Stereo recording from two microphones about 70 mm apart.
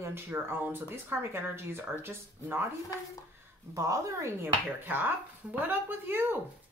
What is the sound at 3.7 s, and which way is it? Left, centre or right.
Speech, right.